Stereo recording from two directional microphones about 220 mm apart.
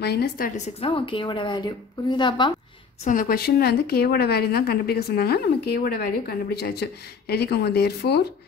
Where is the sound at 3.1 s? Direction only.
40° left (ahead or behind).